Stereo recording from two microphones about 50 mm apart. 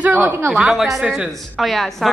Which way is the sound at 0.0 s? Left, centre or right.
Right.